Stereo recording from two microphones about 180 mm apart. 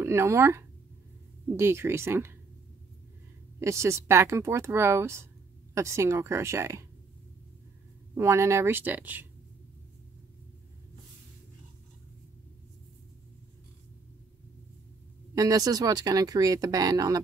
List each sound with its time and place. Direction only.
0.0 s speech: 15° right (ahead or behind)
3.5 s speech: 15° right (ahead or behind)
8.1 s speech: 15° right (ahead or behind)
15.3 s speech: 20° right (ahead or behind)